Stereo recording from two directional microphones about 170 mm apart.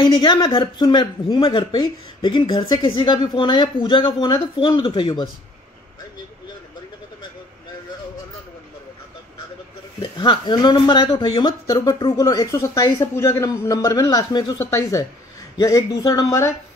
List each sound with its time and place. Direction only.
0.0 s speech: 30° left (ahead or behind)
9.9 s speech: 25° left (ahead or behind)